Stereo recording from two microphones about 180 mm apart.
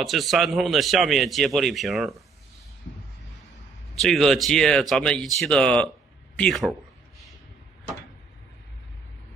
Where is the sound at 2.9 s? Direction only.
60° left (ahead or behind).